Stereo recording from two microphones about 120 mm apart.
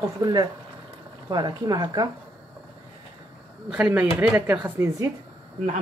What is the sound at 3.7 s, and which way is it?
Speech, 10° right (ahead or behind).